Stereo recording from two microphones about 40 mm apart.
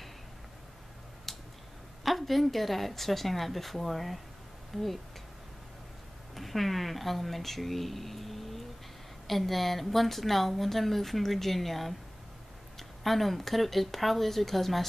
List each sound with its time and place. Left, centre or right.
1.3 s tick-tock: centre
2.0 s speech: centre
4.7 s speech: centre
6.3 s speech: centre